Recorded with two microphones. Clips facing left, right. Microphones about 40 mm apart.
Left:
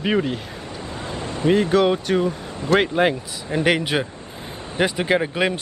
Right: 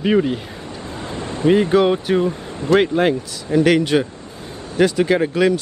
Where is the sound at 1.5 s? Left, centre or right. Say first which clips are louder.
Right 3 dB; centre.